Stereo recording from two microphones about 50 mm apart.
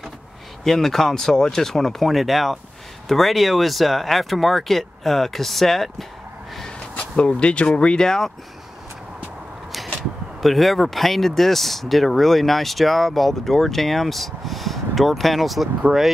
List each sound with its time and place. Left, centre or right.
0.7 s speech: centre
7.0 s speech: left
10.4 s speech: centre